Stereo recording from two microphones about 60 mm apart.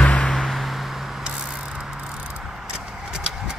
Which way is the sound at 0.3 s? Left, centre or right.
Centre.